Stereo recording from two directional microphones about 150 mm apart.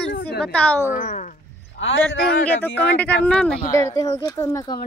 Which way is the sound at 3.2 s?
5° left (ahead or behind).